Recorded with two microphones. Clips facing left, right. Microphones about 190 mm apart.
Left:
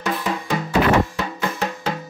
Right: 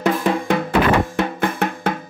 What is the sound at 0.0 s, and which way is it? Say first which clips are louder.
Music: right 6 dB; 55° right (ahead or behind).